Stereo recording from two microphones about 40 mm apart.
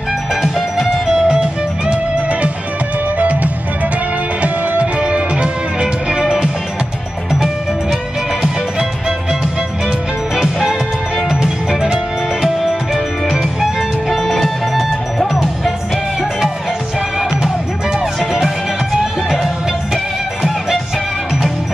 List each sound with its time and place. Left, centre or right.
0.3 s music: centre
1.2 s music: right
3.2 s music: right
6.2 s music: centre
10.4 s music: centre
11.8 s music: centre
19.3 s music: centre